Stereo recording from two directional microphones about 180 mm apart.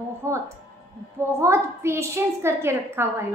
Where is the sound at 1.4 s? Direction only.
15° right (ahead or behind).